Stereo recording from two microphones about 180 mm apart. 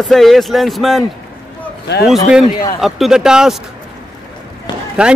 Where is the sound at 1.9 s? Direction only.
70° left (ahead or behind).